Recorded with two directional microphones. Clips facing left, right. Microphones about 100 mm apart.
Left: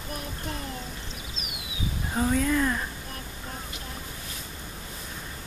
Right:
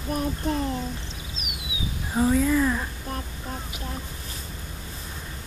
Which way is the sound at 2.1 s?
5° right (ahead or behind).